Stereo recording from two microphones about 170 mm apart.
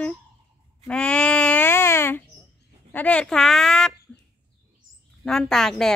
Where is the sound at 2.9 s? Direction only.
10° left (ahead or behind).